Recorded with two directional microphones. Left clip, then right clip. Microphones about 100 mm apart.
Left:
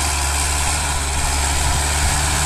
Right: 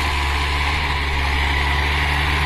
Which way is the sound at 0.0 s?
50° left (ahead or behind).